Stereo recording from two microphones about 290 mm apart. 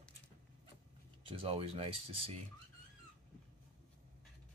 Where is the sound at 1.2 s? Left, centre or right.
Centre.